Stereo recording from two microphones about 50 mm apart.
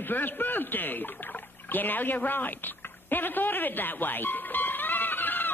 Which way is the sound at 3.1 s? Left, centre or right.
Left.